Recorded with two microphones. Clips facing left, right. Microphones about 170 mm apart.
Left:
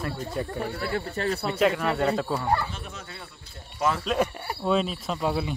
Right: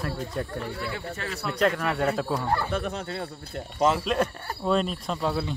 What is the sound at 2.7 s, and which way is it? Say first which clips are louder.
Speech: right 11 dB; 60° right (ahead or behind).